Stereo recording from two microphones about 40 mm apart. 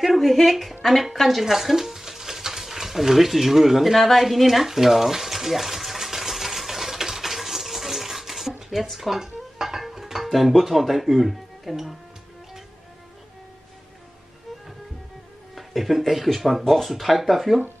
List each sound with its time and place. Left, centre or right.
0.0 s speech: centre
0.8 s a sound: centre
8.8 s music: centre
10.2 s a sound: centre
10.6 s speech: centre
15.5 s speech: centre